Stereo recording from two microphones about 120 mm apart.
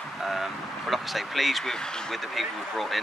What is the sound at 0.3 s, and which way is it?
Speech, centre (ahead or behind).